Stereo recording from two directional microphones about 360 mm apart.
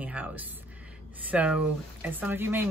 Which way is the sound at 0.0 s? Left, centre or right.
Centre.